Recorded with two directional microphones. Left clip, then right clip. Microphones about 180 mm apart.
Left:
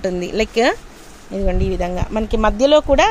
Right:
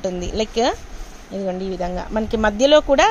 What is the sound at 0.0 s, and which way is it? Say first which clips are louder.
Speech: left 3 dB; 25° left (ahead or behind).